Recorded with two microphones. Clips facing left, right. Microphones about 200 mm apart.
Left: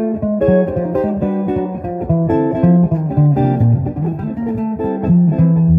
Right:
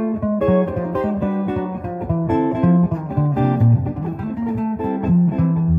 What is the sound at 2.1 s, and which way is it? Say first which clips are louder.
Guitar: left 3 dB; 40° left (ahead or behind).